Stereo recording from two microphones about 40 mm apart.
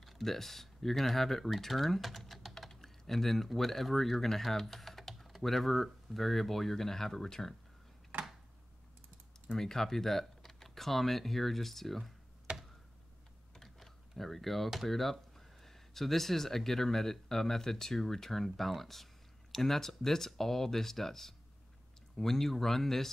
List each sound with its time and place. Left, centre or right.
0.0 s speech: centre
9.5 s speech: centre
12.5 s a sound: right
13.6 s typing: centre
14.9 s speech: centre